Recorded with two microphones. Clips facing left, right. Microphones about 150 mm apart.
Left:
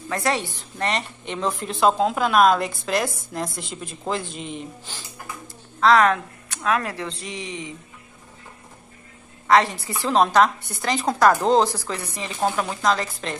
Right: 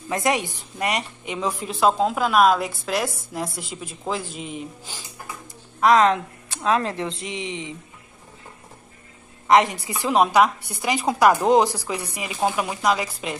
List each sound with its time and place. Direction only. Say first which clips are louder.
0.1 s a woman's voice: right 2 dB; 20° right (ahead or behind)
9.5 s a woman's voice: right 1 dB; 15° right (ahead or behind)